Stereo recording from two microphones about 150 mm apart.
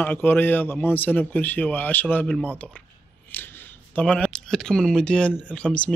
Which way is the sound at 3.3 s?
15° left (ahead or behind).